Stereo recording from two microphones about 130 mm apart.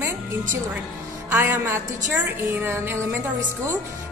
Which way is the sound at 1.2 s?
15° right (ahead or behind).